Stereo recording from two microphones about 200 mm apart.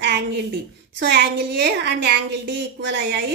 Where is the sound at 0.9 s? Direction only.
60° right (ahead or behind).